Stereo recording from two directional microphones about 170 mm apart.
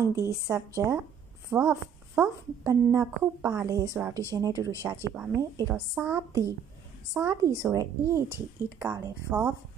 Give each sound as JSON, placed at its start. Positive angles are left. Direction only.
{"t": 0.0, "sound": "a woman's voice", "side_deg": -15}
{"t": 4.1, "sound": "speech", "side_deg": 15}
{"t": 4.4, "sound": "a woman's voice", "side_deg": -20}